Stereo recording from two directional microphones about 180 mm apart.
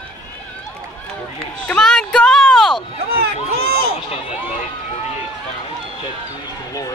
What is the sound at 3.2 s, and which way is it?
Speech, 60° right (ahead or behind).